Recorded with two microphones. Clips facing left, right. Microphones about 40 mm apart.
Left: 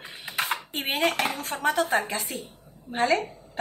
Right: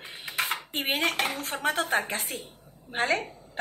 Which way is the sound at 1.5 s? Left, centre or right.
Right.